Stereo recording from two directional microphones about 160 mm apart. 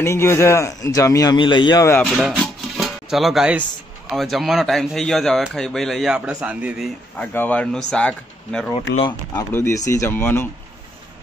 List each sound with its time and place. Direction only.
0.0 s speech: 15° left (ahead or behind)
2.0 s music: centre (ahead or behind)
4.1 s speech: centre (ahead or behind)
7.2 s speech: 10° left (ahead or behind)
9.0 s speech: 20° left (ahead or behind)